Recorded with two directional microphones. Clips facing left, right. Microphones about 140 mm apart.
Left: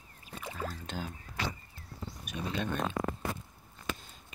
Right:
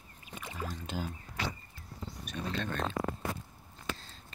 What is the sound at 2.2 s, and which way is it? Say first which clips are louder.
Speech: left 1 dB; 10° left (ahead or behind).